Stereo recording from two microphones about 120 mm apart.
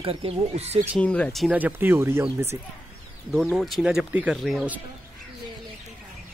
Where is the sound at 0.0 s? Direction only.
50° right (ahead or behind).